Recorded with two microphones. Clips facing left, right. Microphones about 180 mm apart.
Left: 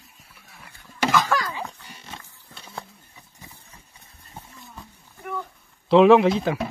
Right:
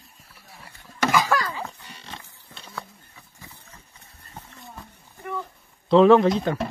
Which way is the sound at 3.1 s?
15° left (ahead or behind).